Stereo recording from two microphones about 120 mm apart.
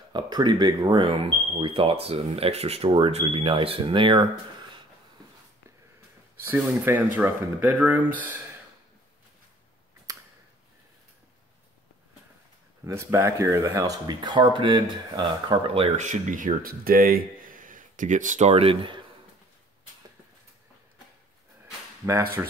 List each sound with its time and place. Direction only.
0.1 s speech: 40° right (ahead or behind)
6.3 s speech: 15° right (ahead or behind)
10.1 s a sound: 30° right (ahead or behind)
12.8 s speech: 25° right (ahead or behind); by 15.9 s 50° right (ahead or behind)
16.0 s speech: 90° right
17.6 s speech: 90° right; by 18.9 s 50° right (ahead or behind)
22.0 s speech: 20° right (ahead or behind)